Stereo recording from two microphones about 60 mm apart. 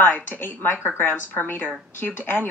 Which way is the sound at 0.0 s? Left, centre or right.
Left.